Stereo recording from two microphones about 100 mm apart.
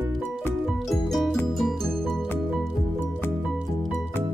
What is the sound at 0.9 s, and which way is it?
Music, centre (ahead or behind).